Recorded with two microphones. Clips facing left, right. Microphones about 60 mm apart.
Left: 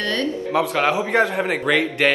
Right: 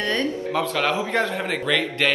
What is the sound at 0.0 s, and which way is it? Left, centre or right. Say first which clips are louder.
Speech: left 1 dB; right.